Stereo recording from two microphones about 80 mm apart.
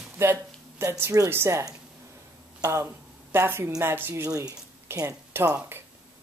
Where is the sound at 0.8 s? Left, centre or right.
Right.